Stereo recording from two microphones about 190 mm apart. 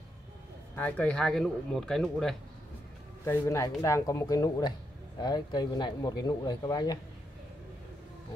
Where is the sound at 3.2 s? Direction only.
15° left (ahead or behind).